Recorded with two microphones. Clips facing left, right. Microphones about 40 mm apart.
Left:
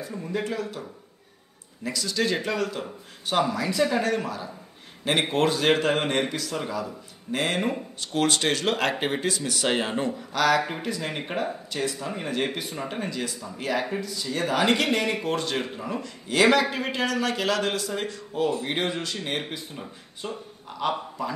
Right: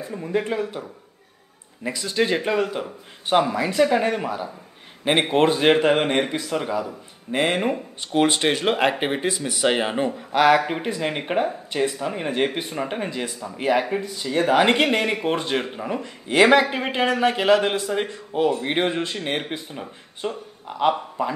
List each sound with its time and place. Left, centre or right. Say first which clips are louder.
0.0 s a man's voice: right 5 dB; right
1.9 s a man's voice: right 4 dB; right